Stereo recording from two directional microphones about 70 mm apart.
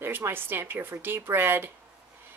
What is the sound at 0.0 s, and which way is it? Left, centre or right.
A woman's voice, right.